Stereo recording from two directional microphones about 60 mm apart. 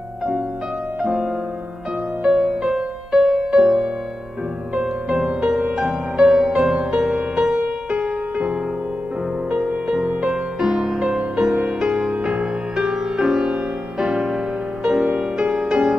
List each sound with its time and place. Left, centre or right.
1.0 s music: centre